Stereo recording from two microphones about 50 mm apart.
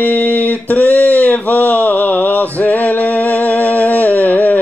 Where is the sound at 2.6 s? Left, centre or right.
Left.